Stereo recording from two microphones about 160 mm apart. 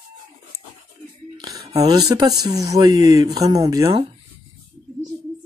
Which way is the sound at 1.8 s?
25° right (ahead or behind).